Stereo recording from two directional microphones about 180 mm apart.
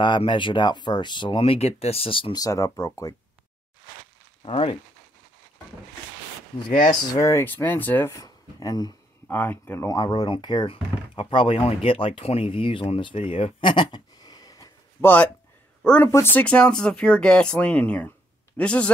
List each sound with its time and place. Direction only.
0.0 s speech: 25° left (ahead or behind)
4.5 s speech: 30° left (ahead or behind)
6.7 s speech: 50° left (ahead or behind)
7.2 s speech: 15° left (ahead or behind)
9.3 s speech: 10° left (ahead or behind)